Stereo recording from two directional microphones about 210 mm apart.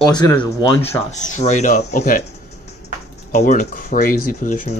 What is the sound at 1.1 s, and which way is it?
Speech, 35° left (ahead or behind).